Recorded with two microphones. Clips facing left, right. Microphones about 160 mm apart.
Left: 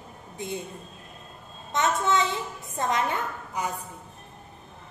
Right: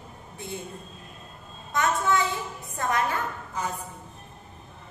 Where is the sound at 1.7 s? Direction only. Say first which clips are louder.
Even; 20° left (ahead or behind).